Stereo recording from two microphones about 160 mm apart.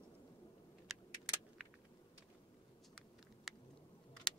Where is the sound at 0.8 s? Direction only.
5° right (ahead or behind).